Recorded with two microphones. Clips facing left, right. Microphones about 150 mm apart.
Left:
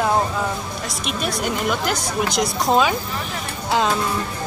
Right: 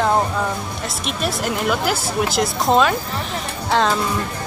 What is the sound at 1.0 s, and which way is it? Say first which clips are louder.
A woman's voice: right 1 dB; centre (ahead or behind).